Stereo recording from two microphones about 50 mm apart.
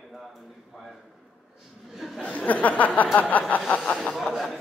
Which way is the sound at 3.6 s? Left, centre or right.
Left.